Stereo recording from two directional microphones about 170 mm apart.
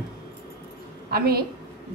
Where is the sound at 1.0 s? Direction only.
65° right (ahead or behind).